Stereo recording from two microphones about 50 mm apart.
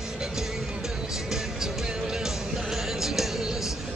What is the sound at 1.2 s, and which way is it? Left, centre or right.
Music, centre.